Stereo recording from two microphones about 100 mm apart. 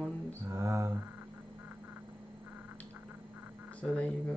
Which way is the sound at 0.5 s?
30° right (ahead or behind).